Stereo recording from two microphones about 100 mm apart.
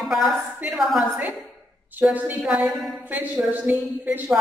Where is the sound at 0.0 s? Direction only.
5° right (ahead or behind).